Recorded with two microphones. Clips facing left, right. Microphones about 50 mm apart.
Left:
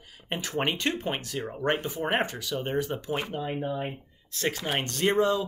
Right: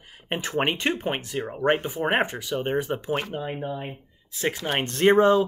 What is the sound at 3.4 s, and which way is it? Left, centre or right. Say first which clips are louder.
Speech: even; centre.